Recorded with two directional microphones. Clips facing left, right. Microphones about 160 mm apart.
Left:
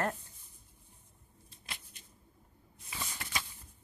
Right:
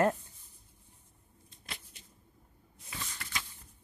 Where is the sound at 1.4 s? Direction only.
Centre (ahead or behind).